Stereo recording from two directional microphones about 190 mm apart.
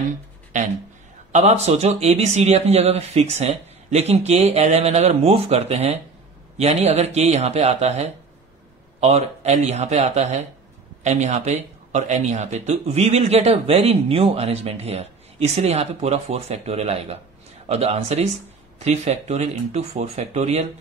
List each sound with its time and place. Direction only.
1.3 s speech: 35° right (ahead or behind)